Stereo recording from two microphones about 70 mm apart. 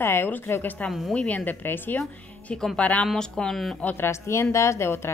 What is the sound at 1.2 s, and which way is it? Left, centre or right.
Speech, left.